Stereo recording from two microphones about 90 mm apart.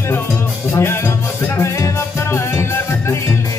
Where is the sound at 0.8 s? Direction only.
30° left (ahead or behind).